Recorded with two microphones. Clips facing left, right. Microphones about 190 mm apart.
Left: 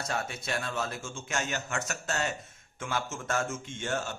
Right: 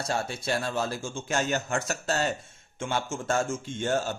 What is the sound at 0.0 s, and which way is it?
Speech, 30° right (ahead or behind).